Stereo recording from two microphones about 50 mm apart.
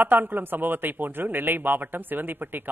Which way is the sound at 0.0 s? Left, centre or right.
Right.